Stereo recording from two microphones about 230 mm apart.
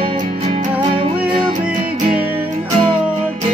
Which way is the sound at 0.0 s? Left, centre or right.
Right.